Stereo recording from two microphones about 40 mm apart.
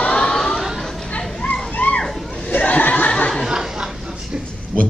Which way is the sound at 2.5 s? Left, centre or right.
Left.